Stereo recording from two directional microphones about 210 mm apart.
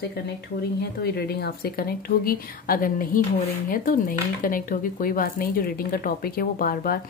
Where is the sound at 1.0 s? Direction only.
50° left (ahead or behind).